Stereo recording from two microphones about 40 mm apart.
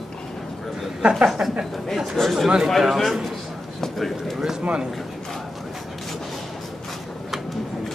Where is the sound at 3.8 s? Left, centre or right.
Centre.